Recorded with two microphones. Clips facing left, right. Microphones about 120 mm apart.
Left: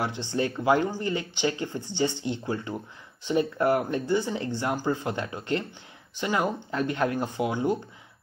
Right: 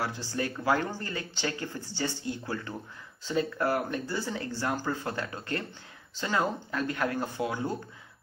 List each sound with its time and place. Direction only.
0.0 s speech: 20° left (ahead or behind)